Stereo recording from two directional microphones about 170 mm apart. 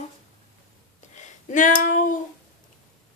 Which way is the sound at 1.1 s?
45° left (ahead or behind).